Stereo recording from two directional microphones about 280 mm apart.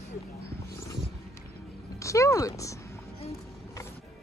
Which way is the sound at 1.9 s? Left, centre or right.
Centre.